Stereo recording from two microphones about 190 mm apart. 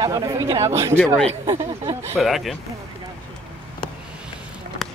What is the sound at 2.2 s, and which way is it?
Speech, centre (ahead or behind).